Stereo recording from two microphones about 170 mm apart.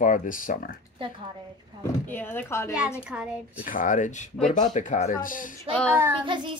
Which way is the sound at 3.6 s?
50° left (ahead or behind).